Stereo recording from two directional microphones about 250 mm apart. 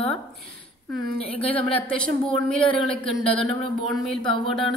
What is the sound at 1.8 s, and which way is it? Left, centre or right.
A woman's voice, centre.